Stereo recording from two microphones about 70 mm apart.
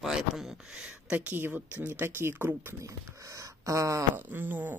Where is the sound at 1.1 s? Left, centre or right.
Right.